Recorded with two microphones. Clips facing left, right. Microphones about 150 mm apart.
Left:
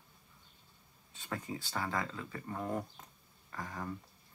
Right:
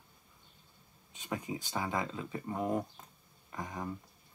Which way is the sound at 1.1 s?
15° right (ahead or behind).